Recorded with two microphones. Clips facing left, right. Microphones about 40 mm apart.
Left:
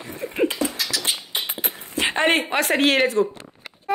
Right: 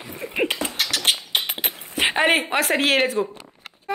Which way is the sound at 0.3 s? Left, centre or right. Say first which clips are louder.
Left 2 dB; right.